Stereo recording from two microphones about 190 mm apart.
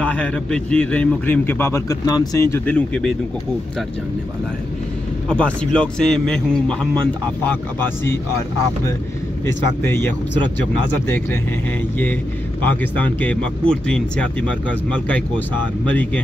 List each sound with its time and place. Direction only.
0.0 s a man's voice: 5° left (ahead or behind)
5.3 s a man's voice: 5° left (ahead or behind)
9.5 s a man's voice: 15° left (ahead or behind)
12.6 s a man's voice: 10° left (ahead or behind)